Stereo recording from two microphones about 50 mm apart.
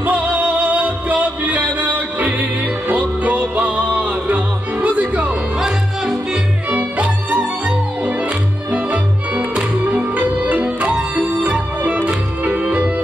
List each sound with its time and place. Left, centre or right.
0.0 s music: right
5.6 s music: centre
6.7 s music: right